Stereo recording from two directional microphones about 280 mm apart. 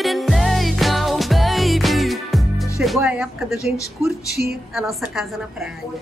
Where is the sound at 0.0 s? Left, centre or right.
Centre.